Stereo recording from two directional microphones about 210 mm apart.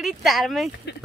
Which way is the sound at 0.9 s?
50° left (ahead or behind).